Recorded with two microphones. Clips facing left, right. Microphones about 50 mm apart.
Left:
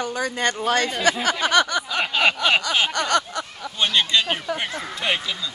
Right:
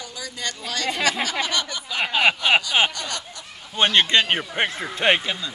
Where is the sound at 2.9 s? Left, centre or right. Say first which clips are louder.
Left 10 dB; left.